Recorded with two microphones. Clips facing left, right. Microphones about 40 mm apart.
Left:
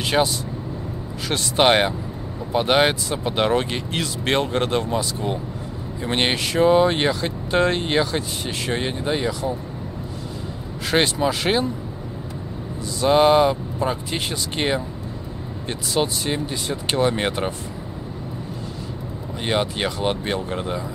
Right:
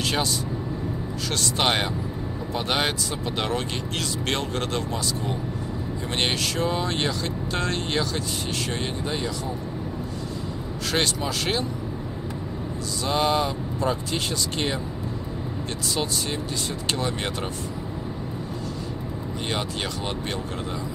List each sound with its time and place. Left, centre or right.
0.0 s vehicle: centre
1.3 s speech: left
10.9 s speech: left
13.0 s speech: left
15.9 s speech: left
19.4 s speech: left